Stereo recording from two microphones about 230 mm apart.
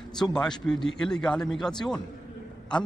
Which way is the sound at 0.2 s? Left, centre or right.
Centre.